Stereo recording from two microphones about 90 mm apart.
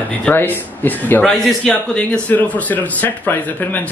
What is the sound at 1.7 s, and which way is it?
Speech, 15° left (ahead or behind).